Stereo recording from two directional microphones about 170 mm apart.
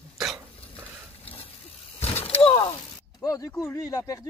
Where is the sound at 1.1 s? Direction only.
35° left (ahead or behind).